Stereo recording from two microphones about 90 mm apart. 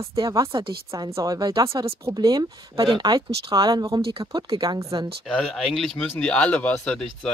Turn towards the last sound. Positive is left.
turn(degrees=10)  # may be behind; listen again after turning